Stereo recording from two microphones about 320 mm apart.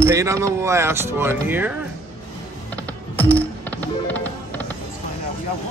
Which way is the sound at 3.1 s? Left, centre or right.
Centre.